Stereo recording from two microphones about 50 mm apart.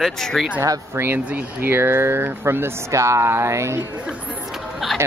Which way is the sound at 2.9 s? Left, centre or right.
Right.